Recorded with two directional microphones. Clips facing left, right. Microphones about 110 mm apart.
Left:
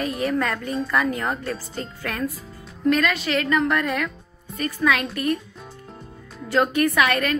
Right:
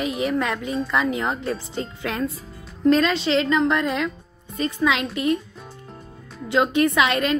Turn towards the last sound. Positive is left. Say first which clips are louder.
# right 1 dB
turn(degrees=-25)  # may be behind; listen again after turning